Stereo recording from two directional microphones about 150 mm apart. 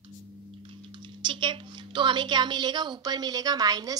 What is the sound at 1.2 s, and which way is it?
A woman's voice, 35° right (ahead or behind).